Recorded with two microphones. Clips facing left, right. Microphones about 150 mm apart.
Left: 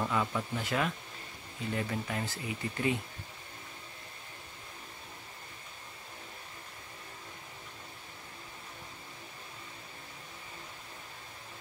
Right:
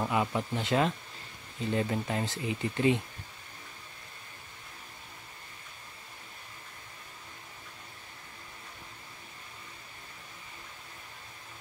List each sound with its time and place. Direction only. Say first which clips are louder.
0.0 s speech: right 2 dB; 20° right (ahead or behind)